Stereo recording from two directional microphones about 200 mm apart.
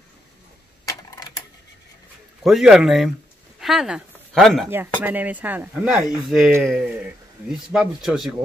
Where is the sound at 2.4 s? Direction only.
Centre (ahead or behind).